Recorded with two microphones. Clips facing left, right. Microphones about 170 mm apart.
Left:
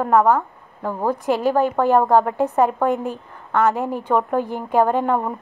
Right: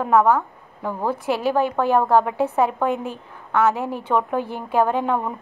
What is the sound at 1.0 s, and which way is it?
A woman's voice, 15° left (ahead or behind).